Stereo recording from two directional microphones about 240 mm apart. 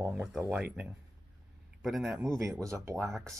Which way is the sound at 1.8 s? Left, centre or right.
Centre.